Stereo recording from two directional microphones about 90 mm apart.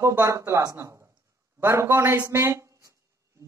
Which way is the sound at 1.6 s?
25° right (ahead or behind).